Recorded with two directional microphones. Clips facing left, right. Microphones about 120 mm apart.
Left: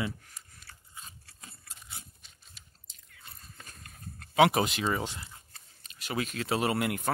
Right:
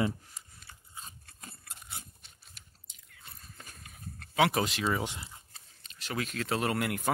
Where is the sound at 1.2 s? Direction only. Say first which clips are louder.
Right 3 dB; 55° right (ahead or behind).